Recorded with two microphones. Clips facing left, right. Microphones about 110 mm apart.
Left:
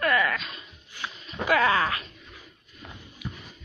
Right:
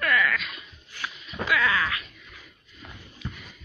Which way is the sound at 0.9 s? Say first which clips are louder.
Right 1 dB; 15° left (ahead or behind).